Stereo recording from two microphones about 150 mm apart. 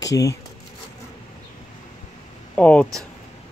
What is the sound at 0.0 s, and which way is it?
Speech, 20° left (ahead or behind).